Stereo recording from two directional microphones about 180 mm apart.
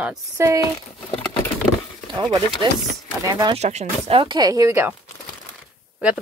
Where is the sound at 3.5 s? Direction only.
35° right (ahead or behind); by 5.0 s 15° right (ahead or behind).